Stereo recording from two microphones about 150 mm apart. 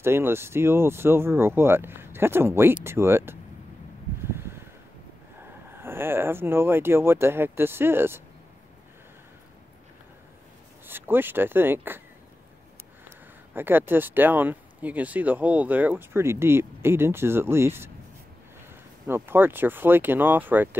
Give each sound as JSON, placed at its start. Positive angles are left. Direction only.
{"t": 0.0, "sound": "speech", "side_deg": -15}
{"t": 4.3, "sound": "a sound", "side_deg": -15}
{"t": 5.8, "sound": "speech", "side_deg": -15}
{"t": 10.9, "sound": "speech", "side_deg": -15}
{"t": 13.5, "sound": "speech", "side_deg": -15}
{"t": 19.0, "sound": "speech", "side_deg": -15}